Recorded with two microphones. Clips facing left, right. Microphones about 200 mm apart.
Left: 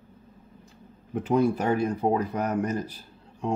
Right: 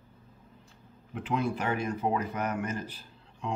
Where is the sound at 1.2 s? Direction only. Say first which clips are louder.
Left 7 dB; 40° left (ahead or behind).